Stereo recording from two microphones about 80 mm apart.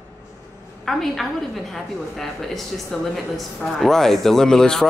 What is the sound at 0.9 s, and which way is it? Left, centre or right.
Speech, centre.